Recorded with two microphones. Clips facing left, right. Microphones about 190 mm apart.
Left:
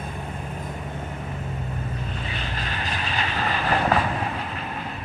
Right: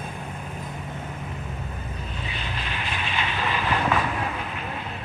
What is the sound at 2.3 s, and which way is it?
Vehicle, 40° left (ahead or behind).